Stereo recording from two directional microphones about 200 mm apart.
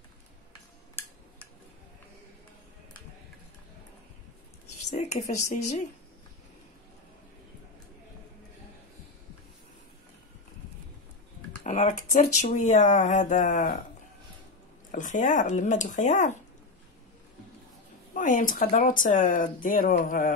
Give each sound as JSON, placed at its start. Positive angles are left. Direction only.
{"t": 4.9, "sound": "speech", "side_deg": 35}
{"t": 11.6, "sound": "speech", "side_deg": 35}
{"t": 14.9, "sound": "speech", "side_deg": 40}
{"t": 18.1, "sound": "speech", "side_deg": 40}